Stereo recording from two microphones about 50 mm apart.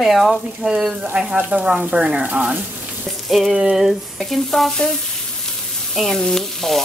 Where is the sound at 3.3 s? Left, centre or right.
Centre.